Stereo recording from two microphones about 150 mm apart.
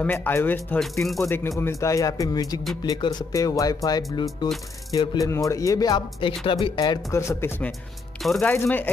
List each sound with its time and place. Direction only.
0.0 s speech: 15° left (ahead or behind)
1.0 s speech: centre (ahead or behind)
1.6 s speech: 20° left (ahead or behind)
8.2 s speech: centre (ahead or behind)
8.5 s speech: 10° left (ahead or behind)